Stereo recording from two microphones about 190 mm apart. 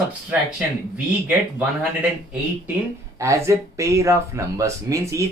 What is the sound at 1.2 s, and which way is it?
Speech, 5° right (ahead or behind).